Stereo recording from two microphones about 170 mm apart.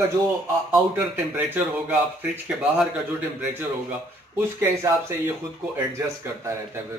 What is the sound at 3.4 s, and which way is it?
Speech, 10° right (ahead or behind).